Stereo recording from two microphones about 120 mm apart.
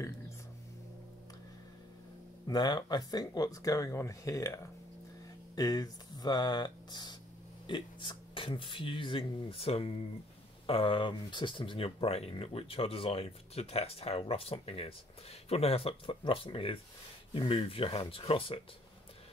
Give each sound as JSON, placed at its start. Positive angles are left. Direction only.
{"t": 2.4, "sound": "speech", "side_deg": 35}
{"t": 5.6, "sound": "speech", "side_deg": 30}